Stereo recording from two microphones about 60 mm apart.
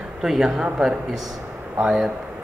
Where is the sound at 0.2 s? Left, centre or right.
Centre.